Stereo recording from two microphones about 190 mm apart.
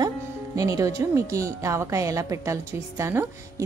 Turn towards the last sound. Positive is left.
turn(degrees=-15)  # may be behind; listen again after turning